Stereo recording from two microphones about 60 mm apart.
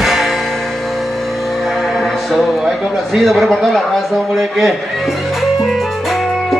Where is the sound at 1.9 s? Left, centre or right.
Centre.